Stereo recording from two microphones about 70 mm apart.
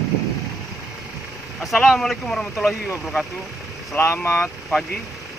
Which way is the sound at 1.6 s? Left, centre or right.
Centre.